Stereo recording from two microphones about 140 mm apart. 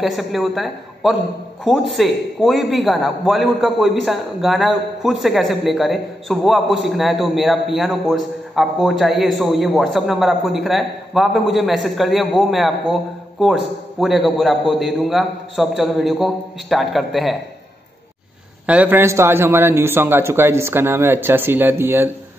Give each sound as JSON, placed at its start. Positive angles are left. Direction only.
{"t": 0.0, "sound": "a man's voice", "side_deg": 0}
{"t": 18.7, "sound": "a man's voice", "side_deg": -10}